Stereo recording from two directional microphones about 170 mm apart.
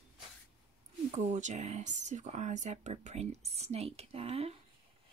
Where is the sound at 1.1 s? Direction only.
45° right (ahead or behind).